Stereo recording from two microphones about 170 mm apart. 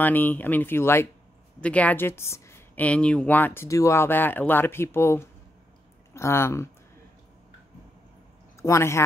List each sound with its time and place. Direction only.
0.0 s a woman's voice: 10° left (ahead or behind)
8.5 s speech: 15° left (ahead or behind)